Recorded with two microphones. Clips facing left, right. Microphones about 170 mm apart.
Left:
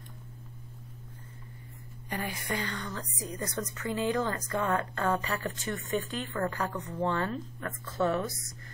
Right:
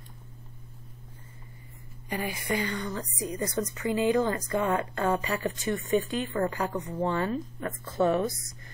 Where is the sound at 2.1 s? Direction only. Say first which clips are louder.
Right 4 dB; 10° right (ahead or behind).